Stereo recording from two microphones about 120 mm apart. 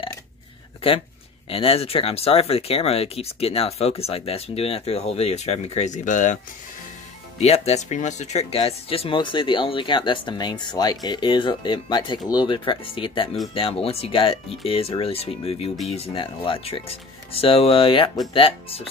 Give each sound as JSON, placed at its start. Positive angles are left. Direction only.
{"t": 1.5, "sound": "speech", "side_deg": 55}
{"t": 7.3, "sound": "speech", "side_deg": 60}